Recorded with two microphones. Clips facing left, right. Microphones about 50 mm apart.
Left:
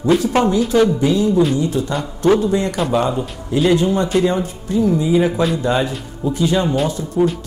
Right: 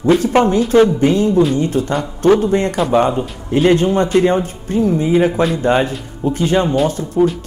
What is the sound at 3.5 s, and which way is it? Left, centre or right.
Speech, right.